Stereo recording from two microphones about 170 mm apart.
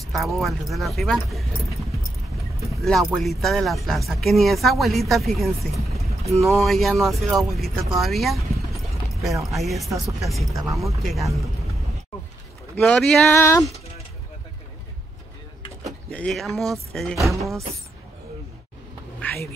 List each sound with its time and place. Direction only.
0.0 s a sound: centre (ahead or behind)
0.4 s speech: centre (ahead or behind)
2.7 s speech: centre (ahead or behind)
6.0 s vehicle: 40° right (ahead or behind)
6.4 s speech: centre (ahead or behind)
10.5 s speech: 20° right (ahead or behind)
11.0 s speech: centre (ahead or behind)
12.7 s speech: 5° left (ahead or behind)
13.3 s music: 15° left (ahead or behind)
16.1 s speech: 5° left (ahead or behind)
19.2 s duck: 15° left (ahead or behind)